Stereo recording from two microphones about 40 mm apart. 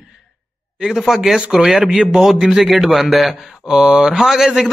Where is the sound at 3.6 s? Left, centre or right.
Right.